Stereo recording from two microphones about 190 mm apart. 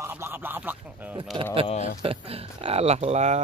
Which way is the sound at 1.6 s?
35° left (ahead or behind).